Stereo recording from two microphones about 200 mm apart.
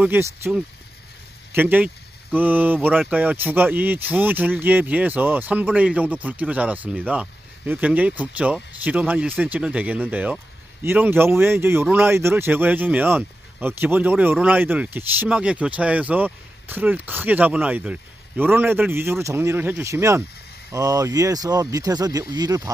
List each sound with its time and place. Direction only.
0.0 s speech: 10° right (ahead or behind)